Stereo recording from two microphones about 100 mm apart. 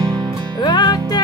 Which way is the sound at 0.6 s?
45° left (ahead or behind).